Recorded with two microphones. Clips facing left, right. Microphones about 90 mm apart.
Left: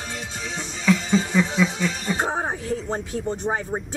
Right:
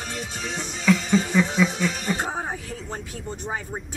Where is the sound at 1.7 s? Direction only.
55° right (ahead or behind).